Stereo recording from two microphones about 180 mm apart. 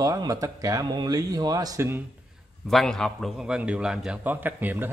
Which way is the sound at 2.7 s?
Centre (ahead or behind).